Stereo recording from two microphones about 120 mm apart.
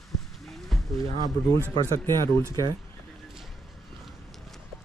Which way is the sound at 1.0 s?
30° left (ahead or behind).